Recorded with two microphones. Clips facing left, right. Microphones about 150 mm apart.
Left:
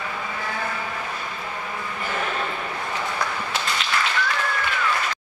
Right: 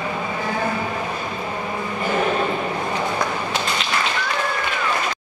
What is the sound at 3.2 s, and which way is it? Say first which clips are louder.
Tap: right 4 dB; 20° right (ahead or behind).